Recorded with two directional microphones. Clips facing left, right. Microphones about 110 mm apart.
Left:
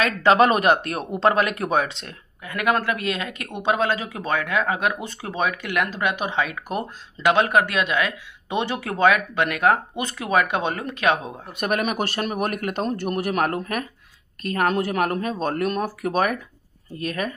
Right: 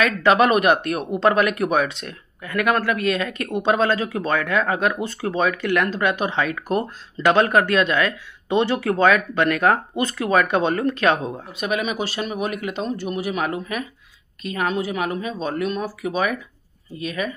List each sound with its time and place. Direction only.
0.0 s speech: 30° left (ahead or behind); by 11.3 s 15° left (ahead or behind)
11.5 s speech: 55° left (ahead or behind)